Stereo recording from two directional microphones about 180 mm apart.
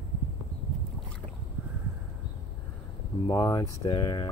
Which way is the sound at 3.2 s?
15° left (ahead or behind).